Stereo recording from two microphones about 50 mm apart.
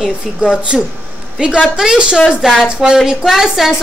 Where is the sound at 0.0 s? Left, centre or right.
Centre.